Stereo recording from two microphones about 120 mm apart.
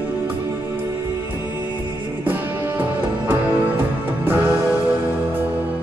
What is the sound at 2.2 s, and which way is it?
Music, 15° right (ahead or behind).